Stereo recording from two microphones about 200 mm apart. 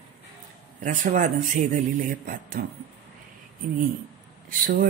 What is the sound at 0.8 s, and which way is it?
Speech, 40° right (ahead or behind).